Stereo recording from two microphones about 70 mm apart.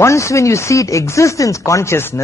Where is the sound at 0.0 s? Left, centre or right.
Left.